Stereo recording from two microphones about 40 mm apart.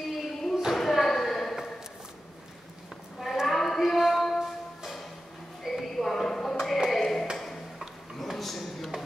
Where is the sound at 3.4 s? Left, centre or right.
Centre.